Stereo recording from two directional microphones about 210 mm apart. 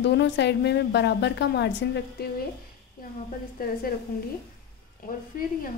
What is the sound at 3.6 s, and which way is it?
Speech, 45° left (ahead or behind).